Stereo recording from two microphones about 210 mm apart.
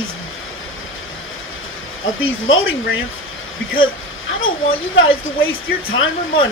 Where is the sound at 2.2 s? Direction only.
70° left (ahead or behind).